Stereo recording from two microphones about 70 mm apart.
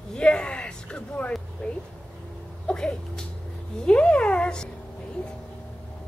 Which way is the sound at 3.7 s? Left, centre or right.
Centre.